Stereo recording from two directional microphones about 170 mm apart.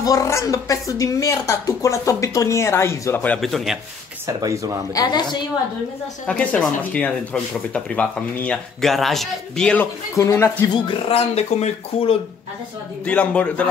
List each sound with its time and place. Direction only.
0.0 s speech: 20° left (ahead or behind)
3.3 s speech: centre (ahead or behind)
4.3 s speech: 20° right (ahead or behind)
4.9 s a woman's voice: 25° left (ahead or behind)
6.2 s speech: 5° left (ahead or behind)
10.1 s speech: 15° left (ahead or behind)
10.7 s speech: 30° left (ahead or behind)
13.0 s speech: 5° left (ahead or behind)